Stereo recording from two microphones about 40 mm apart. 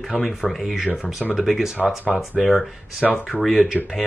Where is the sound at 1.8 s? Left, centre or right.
Centre.